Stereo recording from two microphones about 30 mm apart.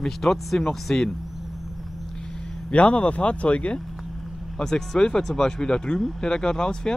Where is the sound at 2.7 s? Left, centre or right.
Left.